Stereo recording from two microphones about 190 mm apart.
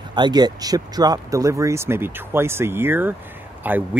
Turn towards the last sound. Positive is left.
turn(degrees=-10)  # may be behind; listen again after turning